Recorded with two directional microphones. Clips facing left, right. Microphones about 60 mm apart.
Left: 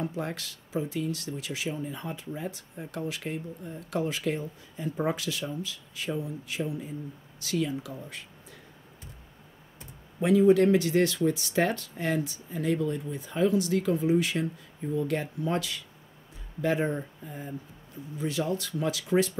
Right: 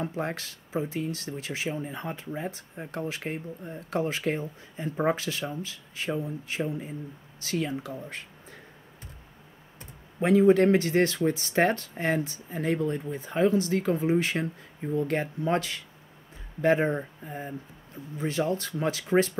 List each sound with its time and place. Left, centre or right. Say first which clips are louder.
0.0 s speech: right 2 dB; right
10.2 s speech: right 1 dB; right